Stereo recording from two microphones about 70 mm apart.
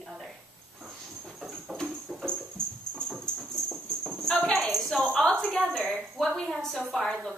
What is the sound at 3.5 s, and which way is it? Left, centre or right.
Clip-clop, centre.